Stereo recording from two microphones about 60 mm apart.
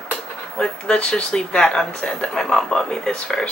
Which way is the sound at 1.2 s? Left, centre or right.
Centre.